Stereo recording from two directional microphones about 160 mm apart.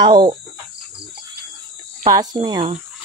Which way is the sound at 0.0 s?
30° right (ahead or behind).